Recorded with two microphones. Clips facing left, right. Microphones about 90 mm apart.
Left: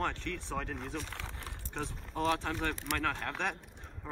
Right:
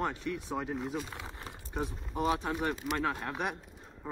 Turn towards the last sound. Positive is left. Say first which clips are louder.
# right 3 dB
turn(degrees=-10)  # may be behind; listen again after turning